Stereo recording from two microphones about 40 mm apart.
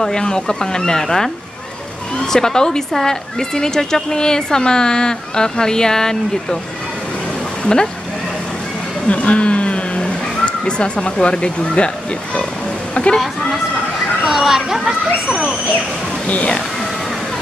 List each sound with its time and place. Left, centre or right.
0.0 s speech: centre
2.3 s speech: centre
7.6 s speech: centre
9.0 s speech: left
13.0 s speech: left
14.2 s speech: centre
16.3 s speech: left